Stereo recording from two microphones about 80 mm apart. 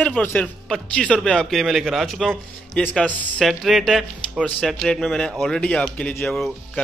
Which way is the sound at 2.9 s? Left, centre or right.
Centre.